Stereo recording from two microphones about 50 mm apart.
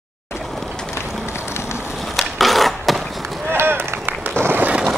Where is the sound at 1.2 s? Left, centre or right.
Left.